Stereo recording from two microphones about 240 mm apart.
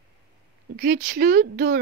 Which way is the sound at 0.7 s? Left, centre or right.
Right.